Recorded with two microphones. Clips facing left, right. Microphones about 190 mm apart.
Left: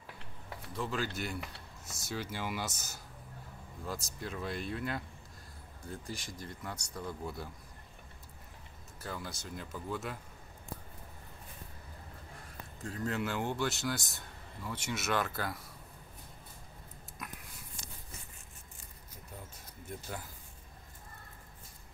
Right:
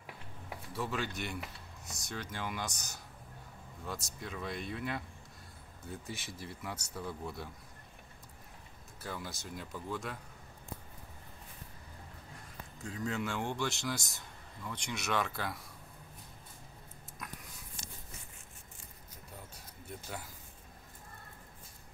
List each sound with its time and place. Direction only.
0.0 s a sound: 15° right (ahead or behind)
0.8 s a man's voice: centre (ahead or behind)
9.0 s a man's voice: centre (ahead or behind)
12.8 s a man's voice: centre (ahead or behind)